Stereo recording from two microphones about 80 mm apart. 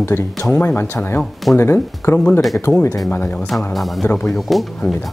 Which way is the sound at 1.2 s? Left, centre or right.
Centre.